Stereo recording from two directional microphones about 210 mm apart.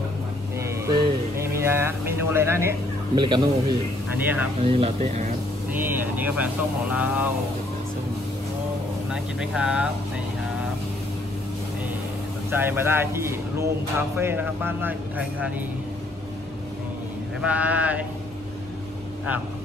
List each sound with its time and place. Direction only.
0.6 s music: 15° right (ahead or behind)
1.6 s a sound: 10° right (ahead or behind)
3.2 s speech: 20° right (ahead or behind)
4.1 s speech: 10° right (ahead or behind)
4.6 s speech: 30° right (ahead or behind)
5.7 s speech: 10° right (ahead or behind)
9.1 s speech: 5° right (ahead or behind)
12.4 s speech: 10° right (ahead or behind)
17.4 s speech: 5° right (ahead or behind)